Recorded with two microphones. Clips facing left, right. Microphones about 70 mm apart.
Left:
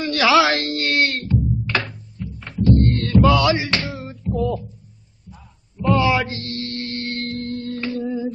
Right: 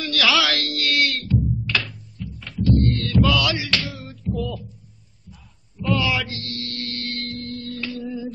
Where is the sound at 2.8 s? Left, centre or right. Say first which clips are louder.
Left 4 dB; left.